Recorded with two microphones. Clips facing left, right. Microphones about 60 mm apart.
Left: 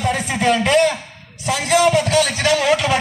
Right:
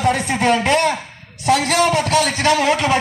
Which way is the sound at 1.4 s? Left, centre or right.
Right.